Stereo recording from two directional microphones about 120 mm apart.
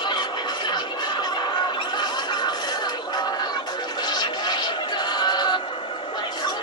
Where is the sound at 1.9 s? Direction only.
40° left (ahead or behind).